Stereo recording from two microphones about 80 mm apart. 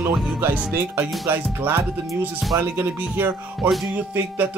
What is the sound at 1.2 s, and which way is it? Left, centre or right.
Speech, right.